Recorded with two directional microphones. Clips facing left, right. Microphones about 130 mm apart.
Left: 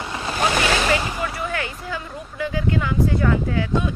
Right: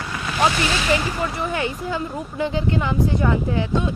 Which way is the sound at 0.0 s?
25° left (ahead or behind).